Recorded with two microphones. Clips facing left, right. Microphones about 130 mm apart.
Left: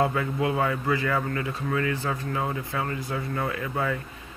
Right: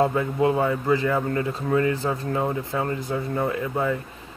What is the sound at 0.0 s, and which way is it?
A man's voice, 25° right (ahead or behind).